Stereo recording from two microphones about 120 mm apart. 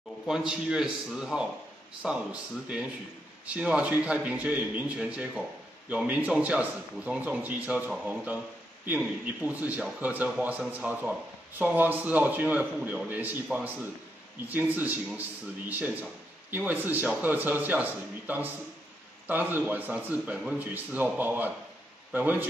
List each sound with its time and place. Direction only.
0.3 s a man's voice: 5° right (ahead or behind)
3.4 s a man's voice: 10° right (ahead or behind)